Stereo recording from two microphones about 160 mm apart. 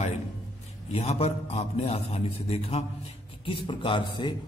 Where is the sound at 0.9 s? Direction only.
40° left (ahead or behind).